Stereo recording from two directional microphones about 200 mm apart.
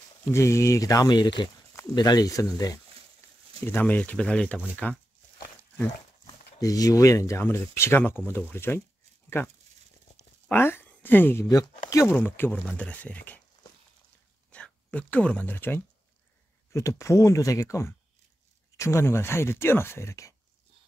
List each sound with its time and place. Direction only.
0.3 s speech: 15° left (ahead or behind)
6.2 s speech: 15° left (ahead or behind)
10.5 s speech: 10° left (ahead or behind)
14.5 s speech: 5° left (ahead or behind)